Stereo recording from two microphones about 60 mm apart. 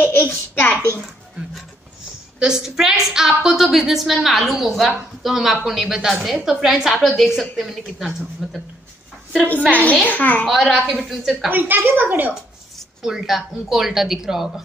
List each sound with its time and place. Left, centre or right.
0.0 s a sound: left
2.3 s a woman's voice: centre
9.4 s a woman's voice: left
10.4 s a woman's voice: centre
11.5 s a child's voice: right
13.0 s a woman's voice: centre